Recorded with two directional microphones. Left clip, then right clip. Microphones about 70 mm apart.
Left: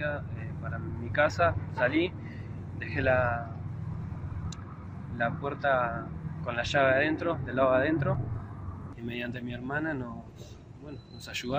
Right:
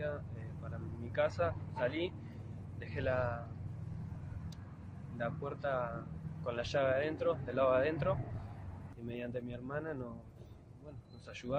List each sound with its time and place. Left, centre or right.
0.7 s a man's voice: right
5.1 s speech: right
9.0 s speech: right
11.3 s a man's voice: right